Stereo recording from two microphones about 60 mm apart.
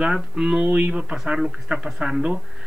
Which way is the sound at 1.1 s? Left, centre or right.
Centre.